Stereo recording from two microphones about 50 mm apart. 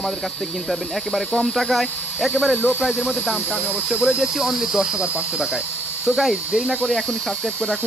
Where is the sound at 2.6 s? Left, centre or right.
Right.